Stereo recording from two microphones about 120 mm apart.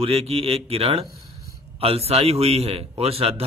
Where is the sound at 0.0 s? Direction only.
55° right (ahead or behind).